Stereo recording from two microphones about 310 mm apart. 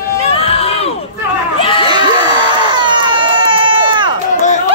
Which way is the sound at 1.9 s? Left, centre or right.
Centre.